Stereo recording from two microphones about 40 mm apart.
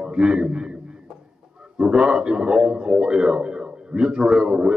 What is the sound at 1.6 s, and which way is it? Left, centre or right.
A man's voice, centre.